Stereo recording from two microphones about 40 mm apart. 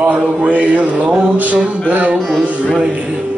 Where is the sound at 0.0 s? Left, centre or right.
Right.